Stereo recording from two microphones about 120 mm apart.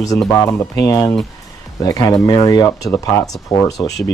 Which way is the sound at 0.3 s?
20° left (ahead or behind).